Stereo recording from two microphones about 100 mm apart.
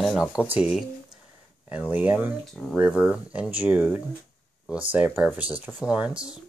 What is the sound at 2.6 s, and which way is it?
Speech, centre (ahead or behind).